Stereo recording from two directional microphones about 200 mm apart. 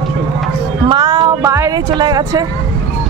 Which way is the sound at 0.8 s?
20° right (ahead or behind).